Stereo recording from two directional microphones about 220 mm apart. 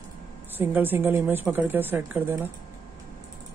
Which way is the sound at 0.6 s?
10° right (ahead or behind).